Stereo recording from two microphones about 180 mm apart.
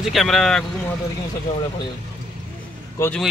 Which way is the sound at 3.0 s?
15° left (ahead or behind).